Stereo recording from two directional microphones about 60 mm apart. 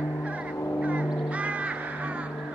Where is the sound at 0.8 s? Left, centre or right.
Right.